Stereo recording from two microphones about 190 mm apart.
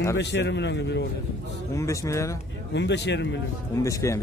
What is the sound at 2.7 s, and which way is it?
Speech, 65° left (ahead or behind).